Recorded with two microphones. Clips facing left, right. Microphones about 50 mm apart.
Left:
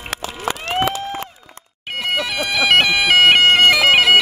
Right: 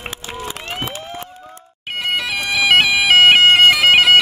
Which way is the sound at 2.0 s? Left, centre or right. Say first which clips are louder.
Even; centre.